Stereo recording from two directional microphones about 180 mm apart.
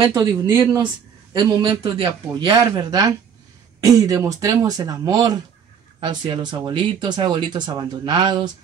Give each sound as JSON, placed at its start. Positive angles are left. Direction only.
{"t": 0.0, "sound": "speech", "side_deg": -20}
{"t": 1.3, "sound": "speech", "side_deg": -25}